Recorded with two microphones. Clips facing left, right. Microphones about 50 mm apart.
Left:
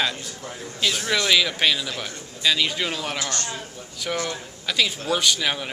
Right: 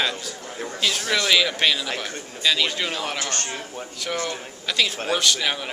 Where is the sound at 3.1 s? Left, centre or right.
Right.